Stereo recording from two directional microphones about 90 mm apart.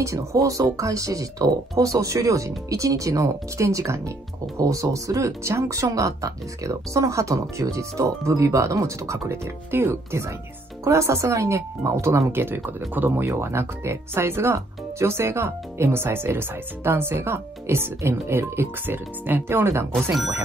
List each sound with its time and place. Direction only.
0.0 s speech: 35° right (ahead or behind)